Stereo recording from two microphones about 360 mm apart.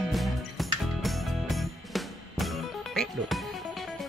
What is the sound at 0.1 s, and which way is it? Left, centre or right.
Music, centre.